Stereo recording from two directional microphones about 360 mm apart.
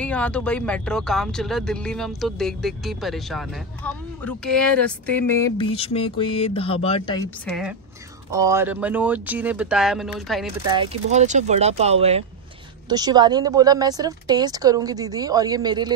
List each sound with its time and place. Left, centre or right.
0.0 s speech: centre
5.4 s mantra: centre
7.4 s speech: centre
10.7 s speech: centre